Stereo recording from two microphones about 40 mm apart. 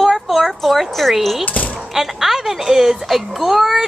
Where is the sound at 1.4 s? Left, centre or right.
Left.